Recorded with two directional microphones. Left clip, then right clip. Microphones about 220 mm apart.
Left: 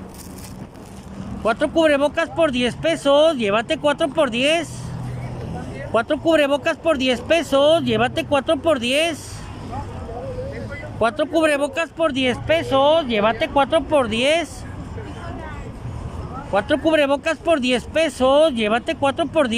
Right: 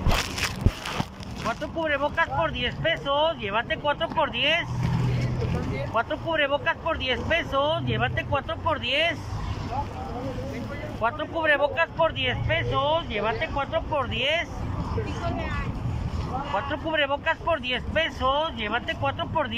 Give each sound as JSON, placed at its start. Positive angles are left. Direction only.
{"t": 1.5, "sound": "speech", "side_deg": 60}
{"t": 5.9, "sound": "speech", "side_deg": 60}
{"t": 11.0, "sound": "speech", "side_deg": 60}
{"t": 16.5, "sound": "speech", "side_deg": 60}